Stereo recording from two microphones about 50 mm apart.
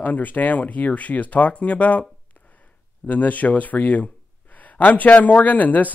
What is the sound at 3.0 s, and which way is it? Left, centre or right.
Speech, left.